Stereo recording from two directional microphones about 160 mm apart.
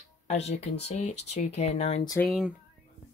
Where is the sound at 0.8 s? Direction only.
45° left (ahead or behind).